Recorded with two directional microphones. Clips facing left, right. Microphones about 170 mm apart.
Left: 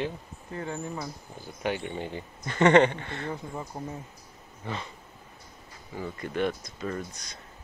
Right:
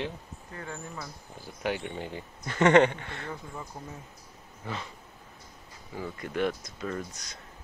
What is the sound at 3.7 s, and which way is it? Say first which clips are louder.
Speech: left 6 dB; 25° left (ahead or behind).